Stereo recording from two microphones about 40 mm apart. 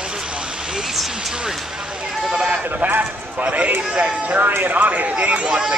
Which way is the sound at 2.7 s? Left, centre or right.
Right.